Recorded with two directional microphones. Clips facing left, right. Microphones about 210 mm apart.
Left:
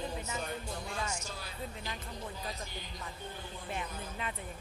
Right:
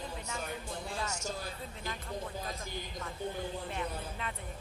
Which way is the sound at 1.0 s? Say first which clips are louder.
Right 2 dB; 45° right (ahead or behind).